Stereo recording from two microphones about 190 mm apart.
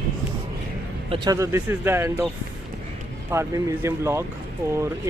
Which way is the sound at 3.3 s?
15° right (ahead or behind).